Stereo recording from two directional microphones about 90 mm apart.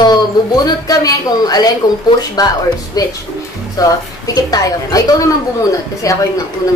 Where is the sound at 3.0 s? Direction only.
45° left (ahead or behind).